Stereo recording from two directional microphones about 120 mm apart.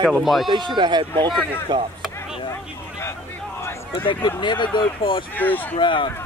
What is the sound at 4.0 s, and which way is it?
Speech, 40° left (ahead or behind).